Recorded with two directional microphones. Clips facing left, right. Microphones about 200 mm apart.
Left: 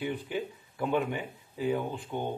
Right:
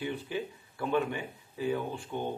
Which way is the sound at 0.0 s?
15° left (ahead or behind).